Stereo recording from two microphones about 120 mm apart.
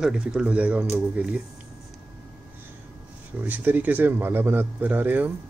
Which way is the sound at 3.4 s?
15° right (ahead or behind).